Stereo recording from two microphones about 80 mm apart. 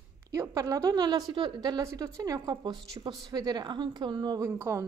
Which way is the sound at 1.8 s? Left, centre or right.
Right.